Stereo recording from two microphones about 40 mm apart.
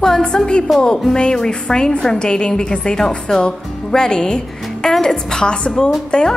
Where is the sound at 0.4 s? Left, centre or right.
Left.